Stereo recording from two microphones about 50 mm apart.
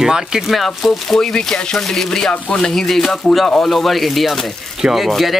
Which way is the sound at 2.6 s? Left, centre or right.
Centre.